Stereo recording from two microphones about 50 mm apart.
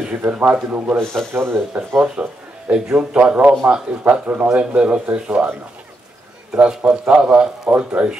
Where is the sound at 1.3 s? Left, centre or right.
Right.